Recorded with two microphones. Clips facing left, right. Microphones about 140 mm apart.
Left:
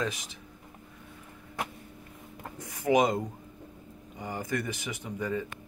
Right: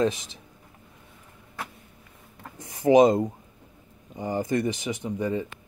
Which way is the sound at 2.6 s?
25° right (ahead or behind).